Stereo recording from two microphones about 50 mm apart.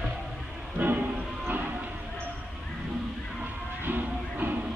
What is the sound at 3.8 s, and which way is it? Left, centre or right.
Music, right.